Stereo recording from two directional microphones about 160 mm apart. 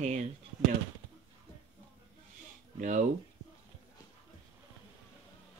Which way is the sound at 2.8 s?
50° right (ahead or behind).